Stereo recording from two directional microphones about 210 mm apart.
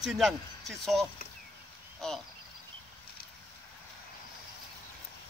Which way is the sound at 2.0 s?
Centre (ahead or behind).